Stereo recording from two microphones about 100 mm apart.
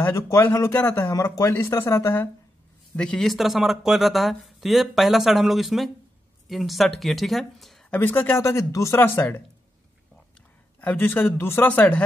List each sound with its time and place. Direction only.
0.1 s speech: 30° left (ahead or behind)
3.0 s speech: 5° left (ahead or behind)
7.9 s speech: 20° left (ahead or behind)
10.8 s speech: 15° left (ahead or behind)